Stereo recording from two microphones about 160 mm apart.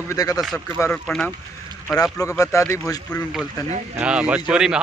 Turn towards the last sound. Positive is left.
turn(degrees=-5)  # may be behind; listen again after turning